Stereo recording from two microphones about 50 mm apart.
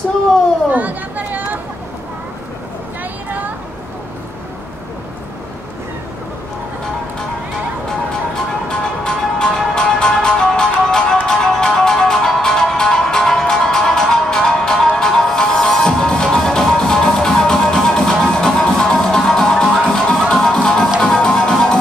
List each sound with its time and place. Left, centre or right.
0.7 s chatter: right
3.0 s vehicle: right
8.6 s music: centre